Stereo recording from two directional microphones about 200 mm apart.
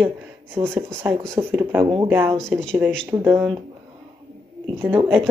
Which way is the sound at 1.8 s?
20° right (ahead or behind).